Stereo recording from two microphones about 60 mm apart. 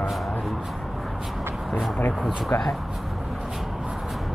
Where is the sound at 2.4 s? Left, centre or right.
Centre.